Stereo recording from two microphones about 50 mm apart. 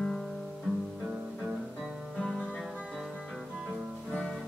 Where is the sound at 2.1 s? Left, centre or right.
Centre.